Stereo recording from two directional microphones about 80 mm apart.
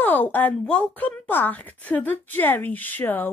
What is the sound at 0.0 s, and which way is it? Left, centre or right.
Speech, left.